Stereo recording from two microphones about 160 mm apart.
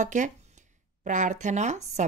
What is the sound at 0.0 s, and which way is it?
Speech, 50° right (ahead or behind).